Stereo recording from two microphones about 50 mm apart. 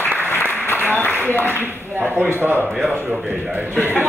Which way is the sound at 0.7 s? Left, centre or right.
Left.